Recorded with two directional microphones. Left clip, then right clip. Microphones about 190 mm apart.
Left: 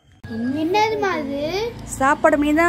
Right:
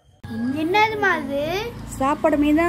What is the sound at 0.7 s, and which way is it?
Speech, 55° right (ahead or behind).